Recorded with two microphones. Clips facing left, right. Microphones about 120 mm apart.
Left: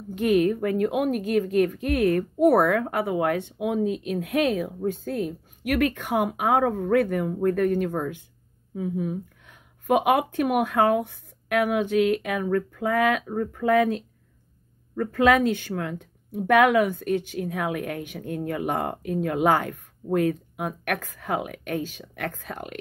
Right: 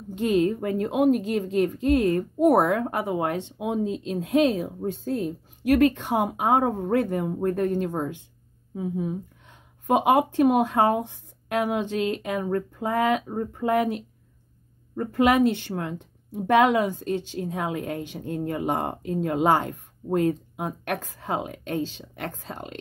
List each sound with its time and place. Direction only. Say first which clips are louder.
0.1 s speech: left 1 dB; 25° right (ahead or behind)